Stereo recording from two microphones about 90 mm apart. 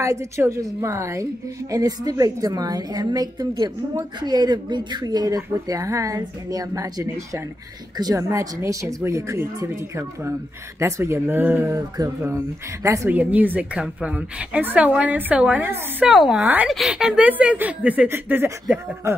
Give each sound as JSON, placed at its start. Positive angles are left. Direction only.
{"t": 0.0, "sound": "speech", "side_deg": -35}
{"t": 1.7, "sound": "speech", "side_deg": -45}
{"t": 13.1, "sound": "speech", "side_deg": -20}
{"t": 16.1, "sound": "a woman's voice", "side_deg": -5}